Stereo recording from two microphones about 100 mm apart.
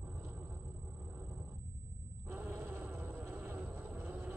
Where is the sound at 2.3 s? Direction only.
20° right (ahead or behind).